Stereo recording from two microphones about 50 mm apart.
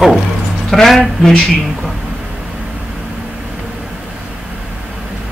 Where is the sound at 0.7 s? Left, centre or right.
Centre.